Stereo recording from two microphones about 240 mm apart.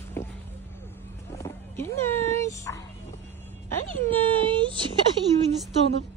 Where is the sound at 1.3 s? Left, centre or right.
Centre.